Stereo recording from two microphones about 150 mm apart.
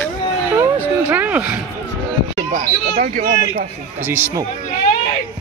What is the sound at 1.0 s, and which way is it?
Speech, 10° right (ahead or behind).